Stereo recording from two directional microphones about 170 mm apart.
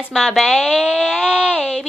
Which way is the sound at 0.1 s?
Centre (ahead or behind).